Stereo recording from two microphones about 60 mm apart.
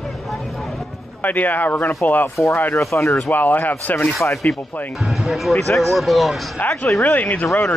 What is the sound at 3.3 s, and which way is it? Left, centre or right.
Speech, left.